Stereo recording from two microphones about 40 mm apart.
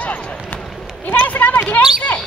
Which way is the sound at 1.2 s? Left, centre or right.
Left.